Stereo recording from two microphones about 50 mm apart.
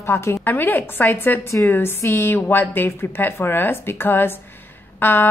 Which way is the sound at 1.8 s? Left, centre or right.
Left.